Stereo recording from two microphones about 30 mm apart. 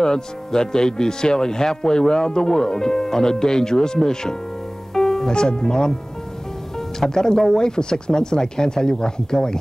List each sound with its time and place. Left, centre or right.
0.0 s speech: left
4.9 s music: centre
5.3 s speech: left
7.2 s speech: centre